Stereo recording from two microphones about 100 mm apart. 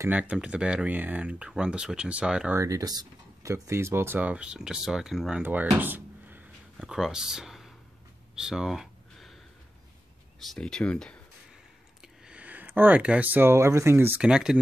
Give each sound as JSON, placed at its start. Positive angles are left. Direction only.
{"t": 0.1, "sound": "speech", "side_deg": -10}
{"t": 2.5, "sound": "speech", "side_deg": -35}
{"t": 5.4, "sound": "speech", "side_deg": -15}
{"t": 5.8, "sound": "a sound", "side_deg": -20}
{"t": 6.9, "sound": "speech", "side_deg": -5}
{"t": 8.4, "sound": "a sound", "side_deg": -5}
{"t": 10.5, "sound": "speech", "side_deg": 5}
{"t": 12.0, "sound": "speech", "side_deg": -10}
{"t": 14.2, "sound": "speech", "side_deg": -10}